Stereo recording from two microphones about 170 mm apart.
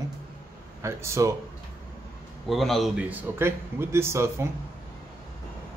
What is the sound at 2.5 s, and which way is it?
A man's voice, centre (ahead or behind).